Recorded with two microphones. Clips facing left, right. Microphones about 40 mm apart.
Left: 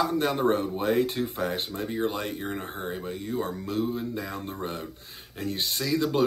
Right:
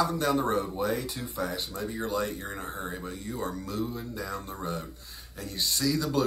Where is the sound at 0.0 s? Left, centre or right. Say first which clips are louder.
Left 2 dB; left.